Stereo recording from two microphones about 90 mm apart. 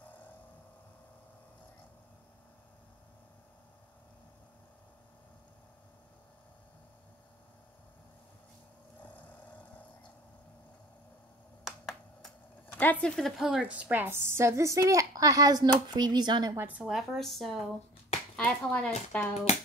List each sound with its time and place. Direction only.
11.6 s finger snapping: centre (ahead or behind)
12.7 s speech: 20° left (ahead or behind)
13.4 s a woman's voice: 10° right (ahead or behind); by 16.5 s 50° right (ahead or behind)
16.5 s speech: 20° right (ahead or behind)
16.8 s speech: centre (ahead or behind)
18.4 s speech: 15° left (ahead or behind)